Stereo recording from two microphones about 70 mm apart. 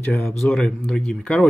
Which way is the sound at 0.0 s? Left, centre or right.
Left.